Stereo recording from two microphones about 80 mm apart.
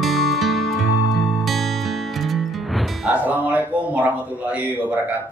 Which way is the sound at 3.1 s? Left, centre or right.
Centre.